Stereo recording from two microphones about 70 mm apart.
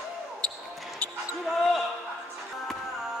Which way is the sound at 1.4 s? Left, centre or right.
Centre.